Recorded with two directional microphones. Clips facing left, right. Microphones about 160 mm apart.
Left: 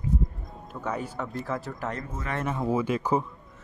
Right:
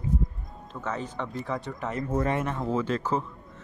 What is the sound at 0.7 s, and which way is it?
A man's voice, 10° left (ahead or behind).